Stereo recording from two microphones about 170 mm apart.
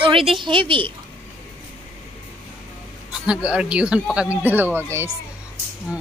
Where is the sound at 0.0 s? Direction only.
30° right (ahead or behind).